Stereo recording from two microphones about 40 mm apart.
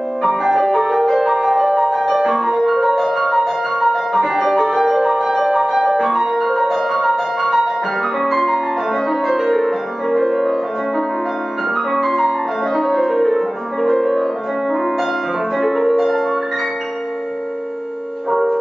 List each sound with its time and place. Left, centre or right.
0.2 s music: centre
15.5 s harp: centre
18.3 s music: centre